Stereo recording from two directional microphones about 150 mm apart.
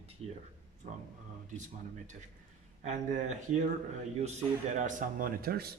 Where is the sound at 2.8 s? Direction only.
55° right (ahead or behind).